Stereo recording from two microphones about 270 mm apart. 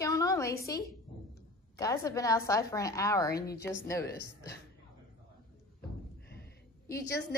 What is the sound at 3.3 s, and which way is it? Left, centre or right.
A woman's voice, left.